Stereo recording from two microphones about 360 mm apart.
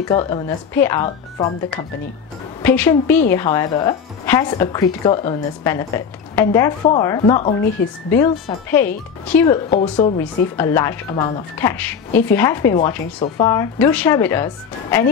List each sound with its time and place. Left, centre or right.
0.1 s speech: centre
2.6 s a woman's voice: centre